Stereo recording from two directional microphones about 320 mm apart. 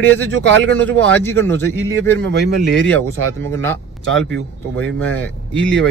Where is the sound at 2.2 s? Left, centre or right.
Right.